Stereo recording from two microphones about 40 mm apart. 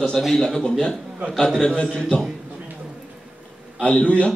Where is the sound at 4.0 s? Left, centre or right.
Left.